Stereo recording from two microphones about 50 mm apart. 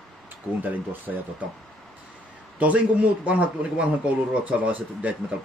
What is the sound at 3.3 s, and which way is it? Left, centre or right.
Speech, right.